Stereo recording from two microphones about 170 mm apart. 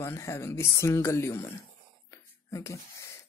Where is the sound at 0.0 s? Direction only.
15° left (ahead or behind).